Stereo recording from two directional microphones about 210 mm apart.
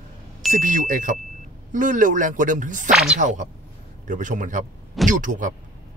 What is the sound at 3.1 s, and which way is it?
Speech, 35° right (ahead or behind).